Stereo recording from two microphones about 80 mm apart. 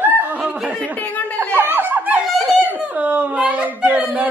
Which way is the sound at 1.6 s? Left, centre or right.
Right.